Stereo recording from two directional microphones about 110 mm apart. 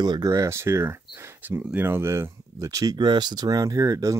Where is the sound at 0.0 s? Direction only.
35° right (ahead or behind).